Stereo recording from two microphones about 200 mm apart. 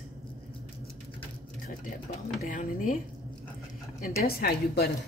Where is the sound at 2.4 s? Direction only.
40° left (ahead or behind).